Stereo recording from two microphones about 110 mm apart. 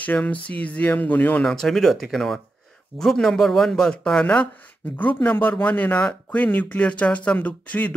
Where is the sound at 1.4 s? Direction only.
5° left (ahead or behind).